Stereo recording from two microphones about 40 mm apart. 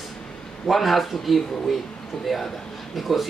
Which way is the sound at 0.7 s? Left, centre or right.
Centre.